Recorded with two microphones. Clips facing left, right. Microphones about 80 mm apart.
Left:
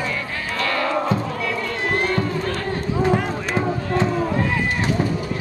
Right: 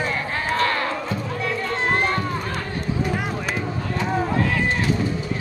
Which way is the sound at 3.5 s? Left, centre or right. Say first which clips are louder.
Left 5 dB; left.